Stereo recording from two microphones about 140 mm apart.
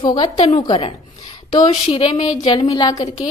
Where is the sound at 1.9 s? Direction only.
40° left (ahead or behind).